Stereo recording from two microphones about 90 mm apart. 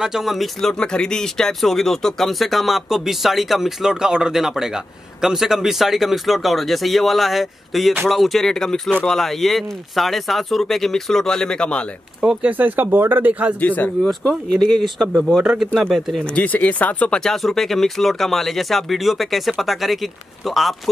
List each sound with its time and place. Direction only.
0.0 s speech: 5° right (ahead or behind)
12.2 s speech: 15° right (ahead or behind)
13.6 s speech: 20° left (ahead or behind)
14.0 s speech: 5° left (ahead or behind)
16.3 s speech: 15° left (ahead or behind)
17.2 s speech: centre (ahead or behind)